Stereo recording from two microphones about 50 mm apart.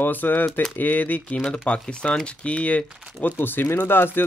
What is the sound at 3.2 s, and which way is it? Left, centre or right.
Speech, left.